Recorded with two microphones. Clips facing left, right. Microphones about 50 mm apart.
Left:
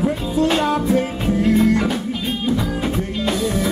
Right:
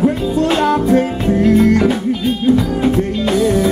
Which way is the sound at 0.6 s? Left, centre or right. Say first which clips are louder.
Right 5 dB; right.